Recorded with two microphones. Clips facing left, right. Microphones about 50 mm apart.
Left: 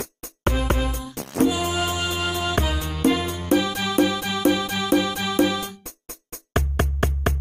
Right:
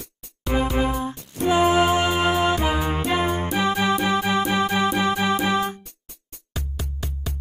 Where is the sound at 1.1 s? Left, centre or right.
Left.